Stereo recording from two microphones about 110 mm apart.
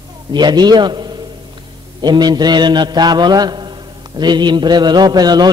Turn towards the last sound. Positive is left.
turn(degrees=-40)  # may be behind; listen again after turning